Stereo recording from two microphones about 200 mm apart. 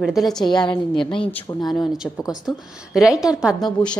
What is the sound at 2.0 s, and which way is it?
A woman's voice, 5° right (ahead or behind).